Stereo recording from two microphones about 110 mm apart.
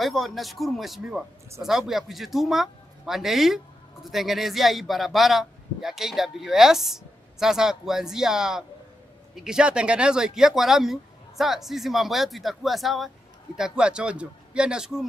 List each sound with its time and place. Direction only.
0.0 s a man's voice: centre (ahead or behind)